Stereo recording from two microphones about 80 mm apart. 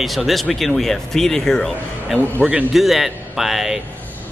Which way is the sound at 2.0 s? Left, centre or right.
Centre.